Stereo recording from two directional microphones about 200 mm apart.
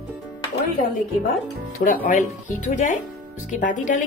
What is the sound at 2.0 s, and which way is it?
Speech, 40° left (ahead or behind).